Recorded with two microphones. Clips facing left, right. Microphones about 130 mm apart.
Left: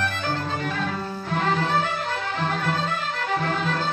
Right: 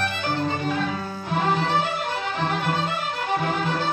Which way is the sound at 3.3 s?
15° right (ahead or behind).